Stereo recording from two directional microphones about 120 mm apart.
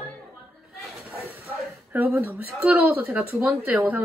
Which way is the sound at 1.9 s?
15° right (ahead or behind).